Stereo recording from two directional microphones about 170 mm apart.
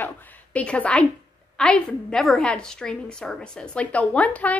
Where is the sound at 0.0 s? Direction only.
10° left (ahead or behind).